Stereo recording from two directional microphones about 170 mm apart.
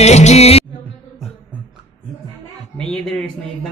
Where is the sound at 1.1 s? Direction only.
Centre (ahead or behind).